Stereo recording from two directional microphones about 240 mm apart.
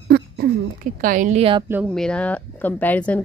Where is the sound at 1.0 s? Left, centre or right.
Right.